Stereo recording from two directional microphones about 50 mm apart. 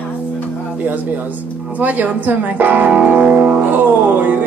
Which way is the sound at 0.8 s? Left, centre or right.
Right.